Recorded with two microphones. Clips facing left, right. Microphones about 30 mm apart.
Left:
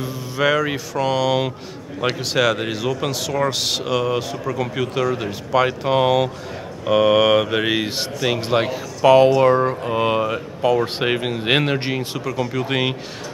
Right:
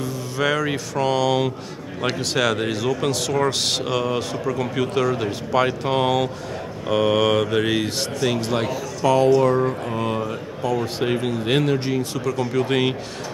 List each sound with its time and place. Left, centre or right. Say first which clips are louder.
0.0 s speech: left 2 dB; centre; by 12.2 s left
12.3 s speech: right 1 dB; centre